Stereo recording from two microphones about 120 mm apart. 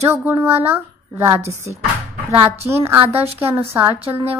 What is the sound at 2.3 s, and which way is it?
Speech, 20° right (ahead or behind).